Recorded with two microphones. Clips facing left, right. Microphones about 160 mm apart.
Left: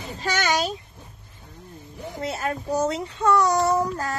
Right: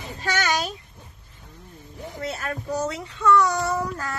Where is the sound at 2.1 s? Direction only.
20° left (ahead or behind).